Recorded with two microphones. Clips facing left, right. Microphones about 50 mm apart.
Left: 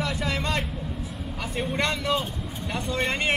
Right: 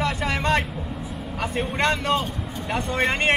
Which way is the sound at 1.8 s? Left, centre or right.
Right.